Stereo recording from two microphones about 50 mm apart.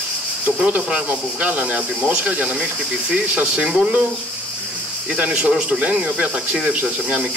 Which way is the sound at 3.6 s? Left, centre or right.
Centre.